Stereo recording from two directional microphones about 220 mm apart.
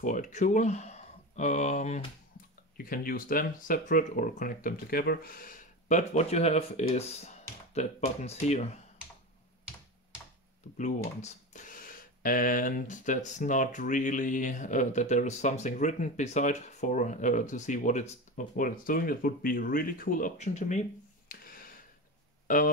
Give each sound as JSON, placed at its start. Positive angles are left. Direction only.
{"t": 0.0, "sound": "speech", "side_deg": 35}
{"t": 10.8, "sound": "speech", "side_deg": 30}
{"t": 21.3, "sound": "a sound", "side_deg": 40}
{"t": 22.5, "sound": "speech", "side_deg": 35}